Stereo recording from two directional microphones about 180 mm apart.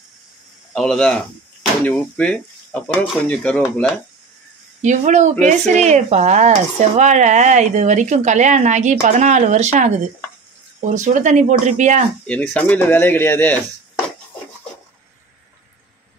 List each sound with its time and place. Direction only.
0.7 s speech: 5° left (ahead or behind)
4.8 s speech: 40° right (ahead or behind)
11.0 s speech: 45° right (ahead or behind)
12.3 s speech: 10° left (ahead or behind)